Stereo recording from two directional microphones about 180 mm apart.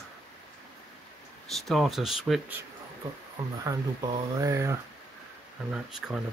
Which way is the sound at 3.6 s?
20° right (ahead or behind).